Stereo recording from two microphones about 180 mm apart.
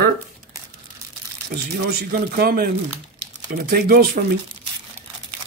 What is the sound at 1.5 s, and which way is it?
Speech, 55° right (ahead or behind).